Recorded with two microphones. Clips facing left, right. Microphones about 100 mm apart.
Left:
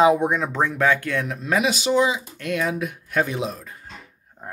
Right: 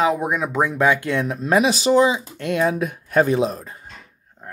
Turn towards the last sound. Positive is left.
turn(degrees=-40)  # may be behind; listen again after turning